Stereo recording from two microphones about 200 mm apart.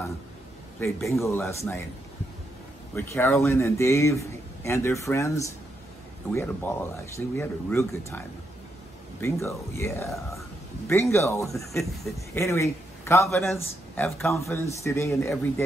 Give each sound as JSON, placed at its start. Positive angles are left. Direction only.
{"t": 0.7, "sound": "speech", "side_deg": 15}
{"t": 3.0, "sound": "speech", "side_deg": 10}
{"t": 9.2, "sound": "speech", "side_deg": 15}